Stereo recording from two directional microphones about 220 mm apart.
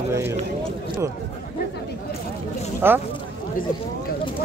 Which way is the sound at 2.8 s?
10° right (ahead or behind).